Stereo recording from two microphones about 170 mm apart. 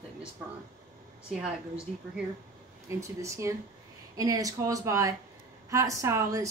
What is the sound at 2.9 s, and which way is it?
Speech, 20° right (ahead or behind).